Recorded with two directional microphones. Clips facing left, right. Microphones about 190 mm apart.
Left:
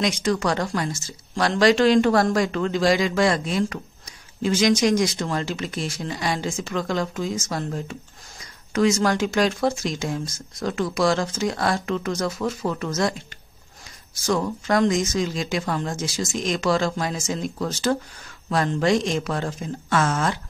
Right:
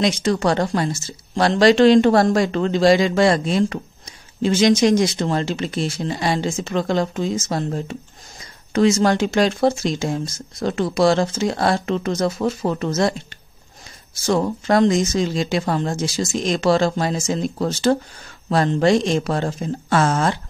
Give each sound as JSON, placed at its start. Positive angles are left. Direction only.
{"t": 0.0, "sound": "speech", "side_deg": -30}
{"t": 14.2, "sound": "speech", "side_deg": -30}